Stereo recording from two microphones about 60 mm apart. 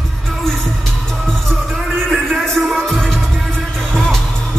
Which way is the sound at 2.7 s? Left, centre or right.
Centre.